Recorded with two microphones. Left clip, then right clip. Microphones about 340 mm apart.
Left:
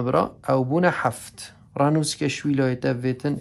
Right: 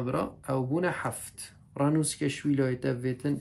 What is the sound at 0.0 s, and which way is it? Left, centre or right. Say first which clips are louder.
Speech: left 10 dB; centre.